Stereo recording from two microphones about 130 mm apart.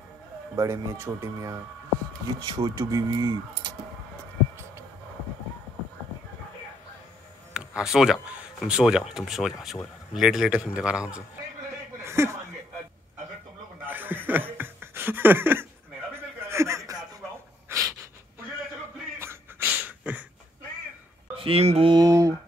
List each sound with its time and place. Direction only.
0.6 s speech: 25° right (ahead or behind)
7.5 s a man's voice: 5° right (ahead or behind)
12.0 s chuckle: 20° right (ahead or behind)
13.8 s a sound: 15° right (ahead or behind)
16.2 s chuckle: 20° right (ahead or behind)
17.7 s a sound: 20° right (ahead or behind)
19.1 s a sound: 20° right (ahead or behind)
21.4 s speech: 50° right (ahead or behind)
21.9 s speech: 25° right (ahead or behind)